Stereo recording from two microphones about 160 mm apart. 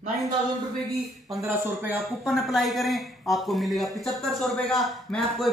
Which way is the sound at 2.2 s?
Centre (ahead or behind).